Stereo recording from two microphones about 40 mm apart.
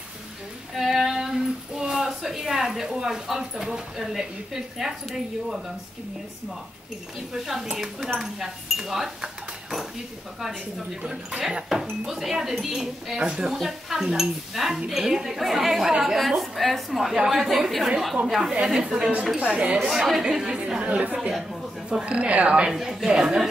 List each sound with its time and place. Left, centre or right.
0.7 s a woman's voice: centre
7.3 s a woman's voice: centre
11.1 s a woman's voice: centre
13.2 s speech: right
13.5 s a woman's voice: centre
18.9 s speech: right
19.9 s speech: centre
20.8 s speech: right
22.7 s a woman's voice: centre